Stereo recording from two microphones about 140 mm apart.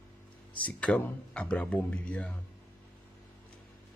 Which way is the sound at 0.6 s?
10° left (ahead or behind).